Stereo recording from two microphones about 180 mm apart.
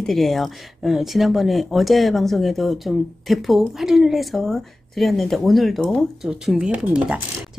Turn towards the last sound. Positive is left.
turn(degrees=-5)  # may be behind; listen again after turning